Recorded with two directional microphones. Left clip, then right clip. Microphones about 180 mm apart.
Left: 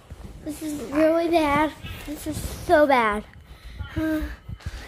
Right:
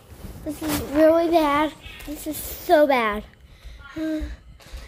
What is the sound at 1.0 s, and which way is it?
A child's voice, 10° right (ahead or behind).